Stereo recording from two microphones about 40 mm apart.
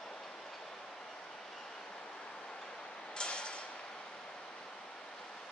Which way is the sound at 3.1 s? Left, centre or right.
Left.